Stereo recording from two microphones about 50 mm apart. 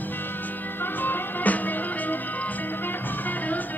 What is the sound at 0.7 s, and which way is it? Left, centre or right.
Music, left.